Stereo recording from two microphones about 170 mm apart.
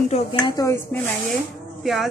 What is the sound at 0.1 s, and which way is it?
Speech, 35° left (ahead or behind).